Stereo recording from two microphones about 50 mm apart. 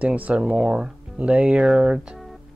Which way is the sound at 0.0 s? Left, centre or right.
Right.